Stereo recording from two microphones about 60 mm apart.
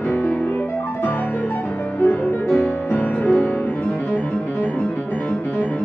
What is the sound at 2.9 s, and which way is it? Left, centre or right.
Music, left.